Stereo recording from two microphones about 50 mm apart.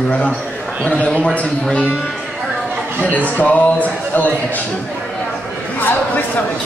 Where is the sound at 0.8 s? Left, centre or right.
Left.